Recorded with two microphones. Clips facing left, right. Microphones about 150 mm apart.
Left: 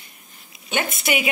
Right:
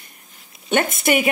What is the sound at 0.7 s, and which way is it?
Speech, 50° right (ahead or behind).